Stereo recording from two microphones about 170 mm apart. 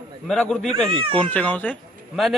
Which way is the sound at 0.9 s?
35° right (ahead or behind).